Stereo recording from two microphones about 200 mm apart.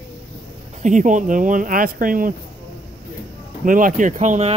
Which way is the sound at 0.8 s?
40° right (ahead or behind).